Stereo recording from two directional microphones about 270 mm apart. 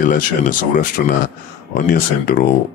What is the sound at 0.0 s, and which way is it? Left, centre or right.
Speech, left.